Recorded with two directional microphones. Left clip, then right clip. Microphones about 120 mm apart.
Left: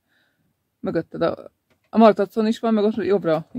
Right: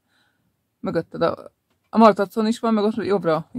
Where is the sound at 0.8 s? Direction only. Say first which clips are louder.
Right 1 dB; 15° left (ahead or behind).